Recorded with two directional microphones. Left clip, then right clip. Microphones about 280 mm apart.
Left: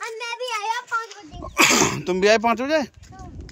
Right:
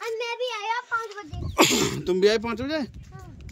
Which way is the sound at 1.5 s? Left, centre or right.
Centre.